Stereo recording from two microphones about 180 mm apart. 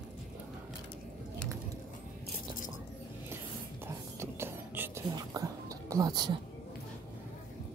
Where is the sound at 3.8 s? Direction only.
15° right (ahead or behind).